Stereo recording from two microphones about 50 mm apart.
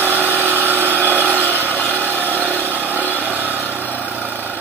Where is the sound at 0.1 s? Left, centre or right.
Right.